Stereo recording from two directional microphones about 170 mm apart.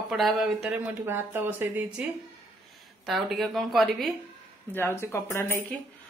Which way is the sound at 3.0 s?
Centre (ahead or behind).